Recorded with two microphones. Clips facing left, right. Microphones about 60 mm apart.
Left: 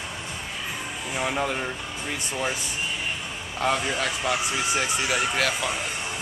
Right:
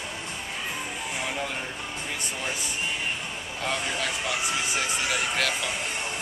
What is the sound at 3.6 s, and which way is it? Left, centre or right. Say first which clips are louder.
Speech: left 5 dB; centre.